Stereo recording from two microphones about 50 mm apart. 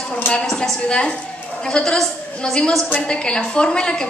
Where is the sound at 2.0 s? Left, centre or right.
Centre.